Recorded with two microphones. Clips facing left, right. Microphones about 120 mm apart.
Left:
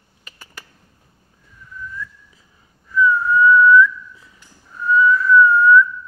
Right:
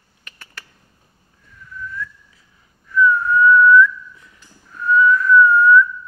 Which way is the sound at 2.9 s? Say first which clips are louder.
Even; 5° left (ahead or behind).